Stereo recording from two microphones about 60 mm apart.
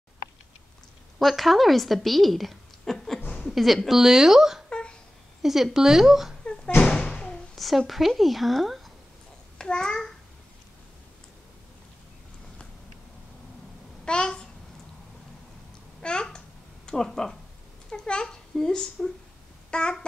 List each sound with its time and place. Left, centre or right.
1.2 s a woman's voice: centre
4.6 s a sound: centre
5.4 s a woman's voice: centre
6.4 s a sound: centre
6.8 s thump: centre
7.5 s a woman's voice: centre
9.6 s a child's voice: centre
14.0 s babbling: centre
16.0 s babbling: centre